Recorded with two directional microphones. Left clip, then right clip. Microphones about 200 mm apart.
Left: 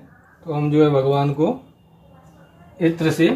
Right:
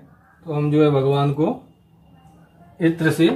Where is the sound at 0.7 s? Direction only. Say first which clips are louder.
Left 1 dB; 20° right (ahead or behind).